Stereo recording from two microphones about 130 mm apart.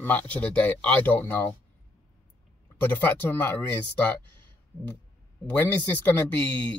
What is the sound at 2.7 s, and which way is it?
Speech, 15° left (ahead or behind).